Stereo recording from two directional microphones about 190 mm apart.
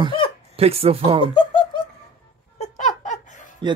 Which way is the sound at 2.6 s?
40° left (ahead or behind).